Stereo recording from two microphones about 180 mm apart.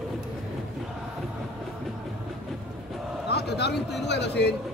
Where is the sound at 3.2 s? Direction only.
65° left (ahead or behind).